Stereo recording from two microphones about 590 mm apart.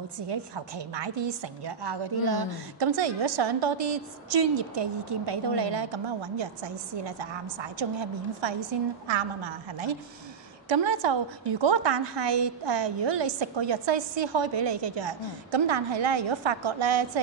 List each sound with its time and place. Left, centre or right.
0.3 s a woman's voice: right
10.7 s a woman's voice: right